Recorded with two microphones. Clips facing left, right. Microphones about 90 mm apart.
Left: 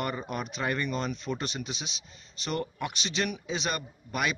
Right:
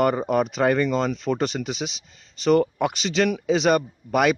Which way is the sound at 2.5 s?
85° right.